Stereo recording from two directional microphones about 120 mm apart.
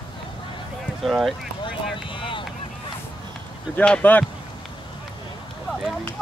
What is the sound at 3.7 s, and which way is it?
Speech, 10° left (ahead or behind).